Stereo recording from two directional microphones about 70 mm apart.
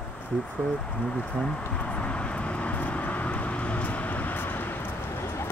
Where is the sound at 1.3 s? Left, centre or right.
Centre.